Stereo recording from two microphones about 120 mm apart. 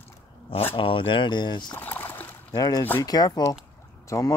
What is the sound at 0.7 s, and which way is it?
Speech, 45° left (ahead or behind).